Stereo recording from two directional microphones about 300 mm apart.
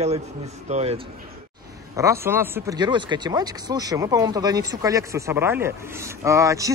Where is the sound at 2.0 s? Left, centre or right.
Centre.